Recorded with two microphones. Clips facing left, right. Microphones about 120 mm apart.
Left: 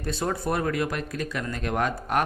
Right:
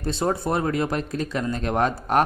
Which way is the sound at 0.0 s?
30° right (ahead or behind).